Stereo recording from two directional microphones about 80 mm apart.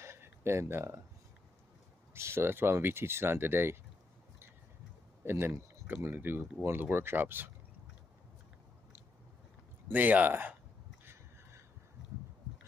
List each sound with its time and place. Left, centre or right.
0.0 s a sound: right
2.1 s speech: right
5.2 s speech: right
9.8 s speech: right